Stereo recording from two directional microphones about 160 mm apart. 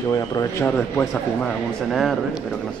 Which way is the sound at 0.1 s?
20° left (ahead or behind).